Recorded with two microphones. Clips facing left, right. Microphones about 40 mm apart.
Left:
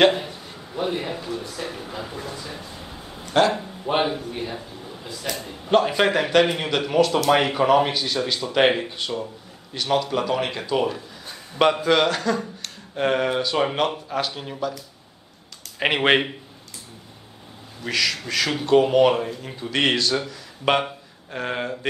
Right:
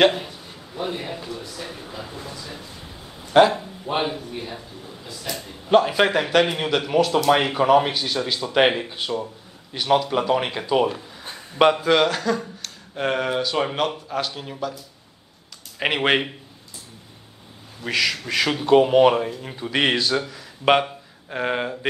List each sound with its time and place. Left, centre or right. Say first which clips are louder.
0.7 s speech: left 2 dB; centre
1.4 s speech: left 3 dB; left
2.0 s speech: left 2 dB; centre
5.7 s speech: right 1 dB; centre
15.8 s speech: left 1 dB; centre
17.8 s speech: right 1 dB; centre